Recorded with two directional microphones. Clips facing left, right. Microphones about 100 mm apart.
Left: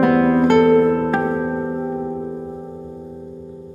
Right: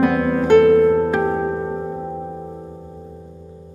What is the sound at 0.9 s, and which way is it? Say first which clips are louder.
Music: right 1 dB; centre (ahead or behind).